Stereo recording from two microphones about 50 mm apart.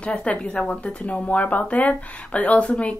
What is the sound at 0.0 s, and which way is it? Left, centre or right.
Speech, left.